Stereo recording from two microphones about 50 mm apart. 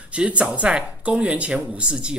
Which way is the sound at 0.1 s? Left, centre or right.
Right.